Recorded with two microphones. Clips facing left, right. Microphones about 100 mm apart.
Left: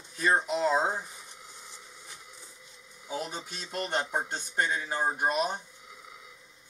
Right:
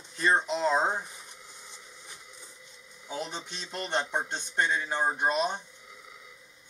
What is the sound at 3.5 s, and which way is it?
Speech, 10° left (ahead or behind).